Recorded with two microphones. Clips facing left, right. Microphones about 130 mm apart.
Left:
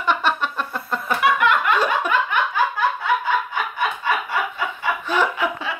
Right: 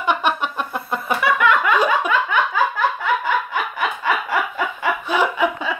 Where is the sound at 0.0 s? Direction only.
15° right (ahead or behind).